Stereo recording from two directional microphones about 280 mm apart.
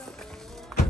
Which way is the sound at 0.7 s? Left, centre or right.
Centre.